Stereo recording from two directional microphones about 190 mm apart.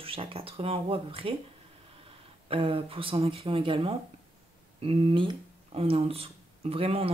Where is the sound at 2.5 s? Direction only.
30° right (ahead or behind).